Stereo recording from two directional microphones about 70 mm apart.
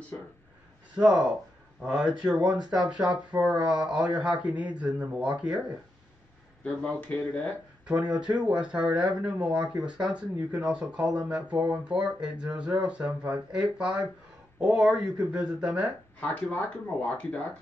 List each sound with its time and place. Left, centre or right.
0.9 s speech: centre
6.6 s speech: centre
7.8 s speech: centre
16.2 s speech: left